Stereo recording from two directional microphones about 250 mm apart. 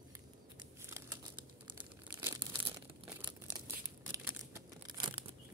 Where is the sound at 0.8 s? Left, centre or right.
Centre.